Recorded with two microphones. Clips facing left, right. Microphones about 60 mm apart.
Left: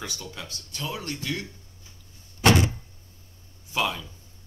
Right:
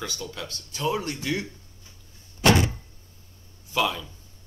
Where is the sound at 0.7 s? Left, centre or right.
Centre.